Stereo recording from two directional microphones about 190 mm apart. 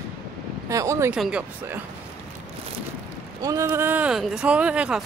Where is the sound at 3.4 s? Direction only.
15° right (ahead or behind).